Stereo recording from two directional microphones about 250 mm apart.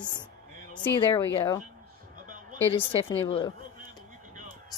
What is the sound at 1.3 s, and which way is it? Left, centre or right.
Speech, centre.